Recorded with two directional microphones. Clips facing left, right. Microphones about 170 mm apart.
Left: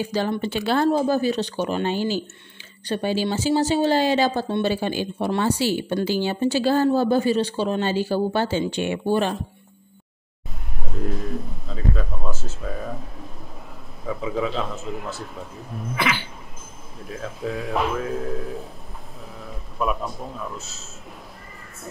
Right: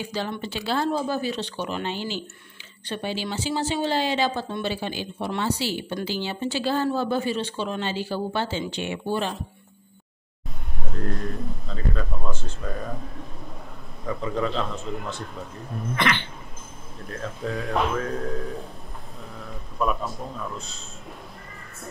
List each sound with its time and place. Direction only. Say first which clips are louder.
0.1 s speech: left 6 dB; 45° left (ahead or behind)
10.8 s speech: left 1 dB; centre (ahead or behind)
14.0 s a man's voice: left 1 dB; 5° left (ahead or behind)